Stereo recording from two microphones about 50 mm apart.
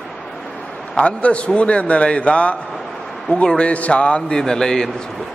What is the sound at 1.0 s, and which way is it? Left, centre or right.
A man's voice, left.